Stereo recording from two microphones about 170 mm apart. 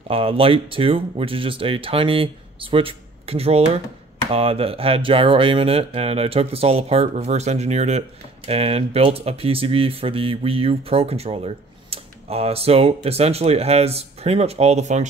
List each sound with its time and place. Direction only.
0.1 s speech: 35° right (ahead or behind)